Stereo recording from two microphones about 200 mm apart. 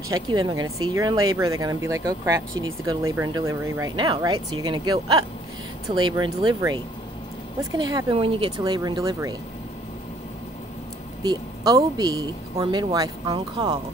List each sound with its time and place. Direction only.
0.1 s speech: 15° right (ahead or behind)
0.6 s speech: 90° right
0.9 s speech: 15° right (ahead or behind)
7.7 s speech: 20° right (ahead or behind)
11.2 s speech: 20° right (ahead or behind)